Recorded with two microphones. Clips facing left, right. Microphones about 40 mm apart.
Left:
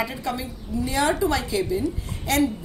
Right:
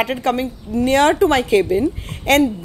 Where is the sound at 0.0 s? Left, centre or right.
Right.